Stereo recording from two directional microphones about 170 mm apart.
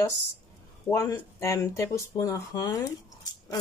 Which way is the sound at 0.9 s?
15° left (ahead or behind).